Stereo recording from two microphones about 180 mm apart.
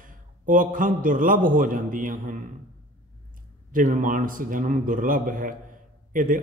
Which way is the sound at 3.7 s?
45° right (ahead or behind).